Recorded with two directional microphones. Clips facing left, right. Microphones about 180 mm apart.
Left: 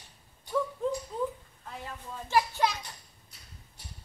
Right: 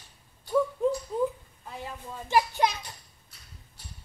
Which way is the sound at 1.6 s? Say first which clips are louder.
Right 3 dB; 15° right (ahead or behind).